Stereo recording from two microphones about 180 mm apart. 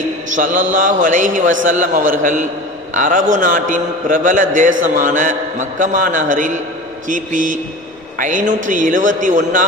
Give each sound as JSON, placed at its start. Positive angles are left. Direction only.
{"t": 0.3, "sound": "mantra", "side_deg": -45}
{"t": 0.7, "sound": "a man's voice", "side_deg": -45}